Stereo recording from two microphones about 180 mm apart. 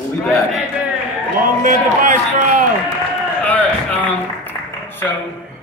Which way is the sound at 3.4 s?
10° left (ahead or behind).